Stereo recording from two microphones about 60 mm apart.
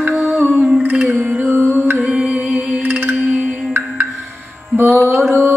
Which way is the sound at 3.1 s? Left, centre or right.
Centre.